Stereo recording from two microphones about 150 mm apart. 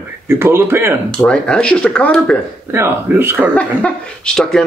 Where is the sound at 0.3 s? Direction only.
15° right (ahead or behind).